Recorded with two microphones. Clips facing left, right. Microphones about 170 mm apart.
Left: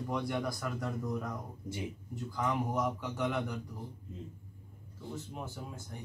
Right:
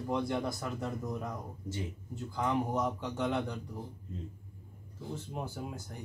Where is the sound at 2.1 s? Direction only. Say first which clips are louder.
Right 2 dB; 25° right (ahead or behind).